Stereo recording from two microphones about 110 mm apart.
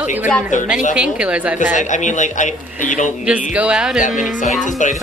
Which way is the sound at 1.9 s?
90° left.